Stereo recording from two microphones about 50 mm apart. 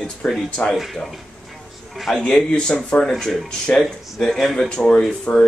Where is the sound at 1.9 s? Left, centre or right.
Centre.